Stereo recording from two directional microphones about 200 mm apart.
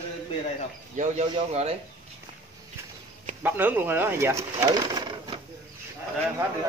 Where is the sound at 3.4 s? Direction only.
10° right (ahead or behind).